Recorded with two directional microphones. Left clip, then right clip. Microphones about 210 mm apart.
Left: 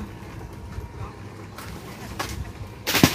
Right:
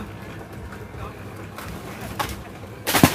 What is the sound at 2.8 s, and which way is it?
Gunshot, 20° right (ahead or behind).